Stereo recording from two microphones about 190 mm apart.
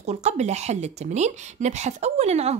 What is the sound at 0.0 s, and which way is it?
Speech, 35° right (ahead or behind).